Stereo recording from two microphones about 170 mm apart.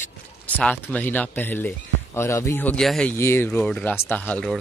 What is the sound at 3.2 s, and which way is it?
Speech, 15° left (ahead or behind).